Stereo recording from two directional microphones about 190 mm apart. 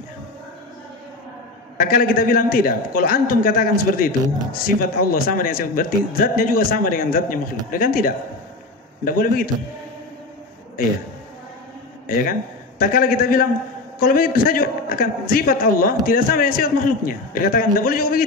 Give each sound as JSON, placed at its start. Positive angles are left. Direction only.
{"t": 1.8, "sound": "a man's voice", "side_deg": 50}
{"t": 12.1, "sound": "a man's voice", "side_deg": 45}